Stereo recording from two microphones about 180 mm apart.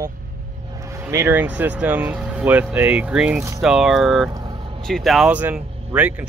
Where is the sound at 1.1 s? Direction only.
15° right (ahead or behind).